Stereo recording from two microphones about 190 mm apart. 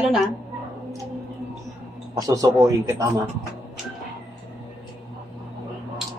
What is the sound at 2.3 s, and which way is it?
Speech, 15° right (ahead or behind).